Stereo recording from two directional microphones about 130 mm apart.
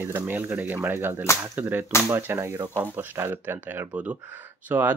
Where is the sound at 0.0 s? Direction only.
15° right (ahead or behind).